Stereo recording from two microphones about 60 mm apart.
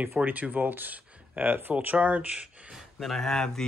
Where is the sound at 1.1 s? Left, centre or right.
Right.